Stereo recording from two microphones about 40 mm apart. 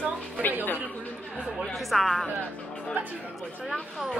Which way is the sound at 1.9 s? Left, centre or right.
Centre.